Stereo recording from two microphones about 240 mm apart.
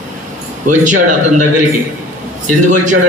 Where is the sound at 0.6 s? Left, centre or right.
Right.